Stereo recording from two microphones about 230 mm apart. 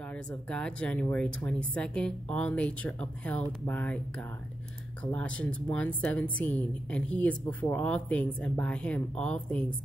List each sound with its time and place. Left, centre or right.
0.1 s a woman's voice: centre